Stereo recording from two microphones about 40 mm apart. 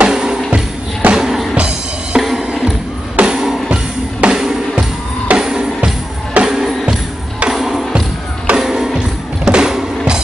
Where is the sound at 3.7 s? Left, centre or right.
Right.